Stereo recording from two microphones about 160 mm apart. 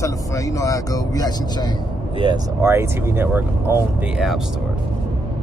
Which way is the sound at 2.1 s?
30° right (ahead or behind).